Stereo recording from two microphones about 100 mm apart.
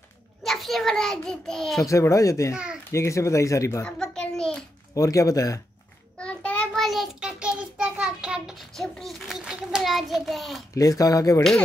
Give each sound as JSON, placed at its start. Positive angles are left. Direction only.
{"t": 0.4, "sound": "a child's voice", "side_deg": 0}
{"t": 1.9, "sound": "speech", "side_deg": 30}
{"t": 2.5, "sound": "a child's voice", "side_deg": -10}
{"t": 2.9, "sound": "speech", "side_deg": 30}
{"t": 3.8, "sound": "a sound", "side_deg": 10}
{"t": 4.9, "sound": "speech", "side_deg": 35}
{"t": 6.1, "sound": "child singing", "side_deg": 10}
{"t": 8.7, "sound": "a sound", "side_deg": 5}
{"t": 10.7, "sound": "speech", "side_deg": 35}